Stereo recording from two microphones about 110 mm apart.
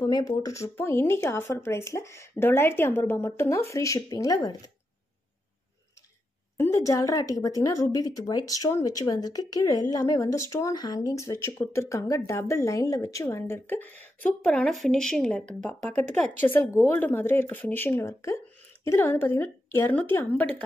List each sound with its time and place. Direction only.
0.1 s speech: 30° left (ahead or behind)
6.5 s a woman's voice: 25° left (ahead or behind); by 15.4 s 5° left (ahead or behind)
16.2 s a woman's voice: 15° left (ahead or behind)